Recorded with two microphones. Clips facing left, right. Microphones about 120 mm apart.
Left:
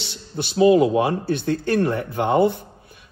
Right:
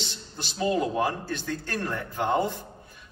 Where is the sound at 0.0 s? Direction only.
60° left (ahead or behind).